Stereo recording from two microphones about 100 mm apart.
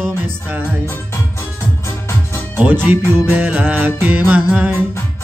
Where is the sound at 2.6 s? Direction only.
20° right (ahead or behind).